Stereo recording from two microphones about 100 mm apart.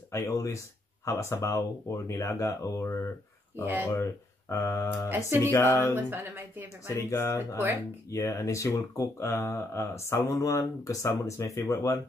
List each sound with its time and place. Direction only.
0.1 s speech: 30° left (ahead or behind)
5.1 s speech: 25° right (ahead or behind)
5.5 s speech: 20° left (ahead or behind)
5.9 s speech: 20° right (ahead or behind)
6.9 s speech: 25° left (ahead or behind)